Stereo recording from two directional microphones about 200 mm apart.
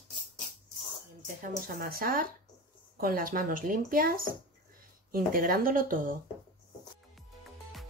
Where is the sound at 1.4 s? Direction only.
45° right (ahead or behind).